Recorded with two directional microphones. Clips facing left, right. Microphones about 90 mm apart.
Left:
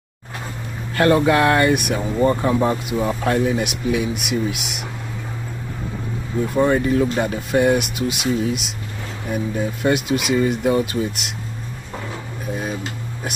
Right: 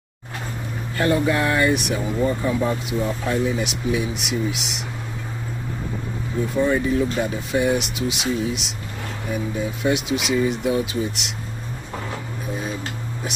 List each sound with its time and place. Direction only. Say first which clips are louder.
0.9 s speech: left 5 dB; 70° left (ahead or behind)
6.6 s speech: left 3 dB; 60° left (ahead or behind)
9.8 s speech: left 3 dB; 50° left (ahead or behind)